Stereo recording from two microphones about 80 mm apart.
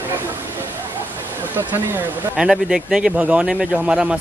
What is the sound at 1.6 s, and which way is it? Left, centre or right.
Speech, right.